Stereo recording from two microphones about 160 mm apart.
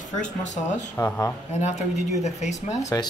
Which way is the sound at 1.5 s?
45° left (ahead or behind).